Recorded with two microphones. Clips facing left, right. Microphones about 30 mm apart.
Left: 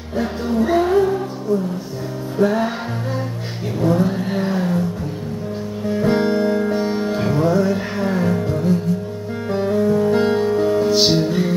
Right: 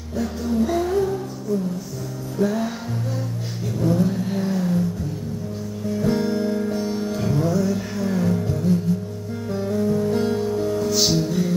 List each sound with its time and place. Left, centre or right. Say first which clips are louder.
0.2 s music: left 3 dB; left
3.8 s vehicle: left 3 dB; left
5.9 s music: left 4 dB; left